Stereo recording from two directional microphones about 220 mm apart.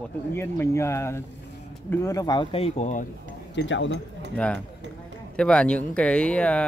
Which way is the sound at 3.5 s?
55° left (ahead or behind).